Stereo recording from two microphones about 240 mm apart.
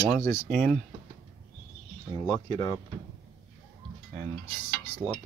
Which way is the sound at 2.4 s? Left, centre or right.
Centre.